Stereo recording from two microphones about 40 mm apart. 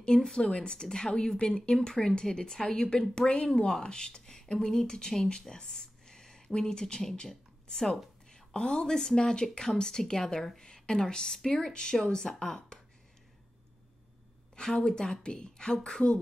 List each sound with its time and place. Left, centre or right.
0.0 s a woman's voice: centre
1.8 s a woman's voice: centre
14.5 s a woman's voice: left